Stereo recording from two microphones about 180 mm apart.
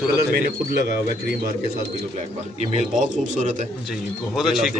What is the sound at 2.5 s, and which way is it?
Speech, 40° right (ahead or behind).